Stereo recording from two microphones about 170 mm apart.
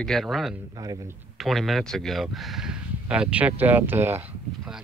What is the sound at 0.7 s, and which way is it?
Speech, 20° right (ahead or behind).